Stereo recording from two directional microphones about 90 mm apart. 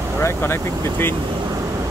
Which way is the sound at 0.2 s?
30° left (ahead or behind).